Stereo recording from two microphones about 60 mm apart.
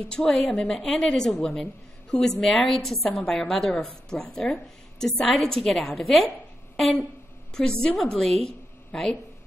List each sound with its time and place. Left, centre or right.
0.0 s a woman's voice: centre
3.1 s a woman's voice: centre
4.2 s speech: left
4.9 s a woman's voice: centre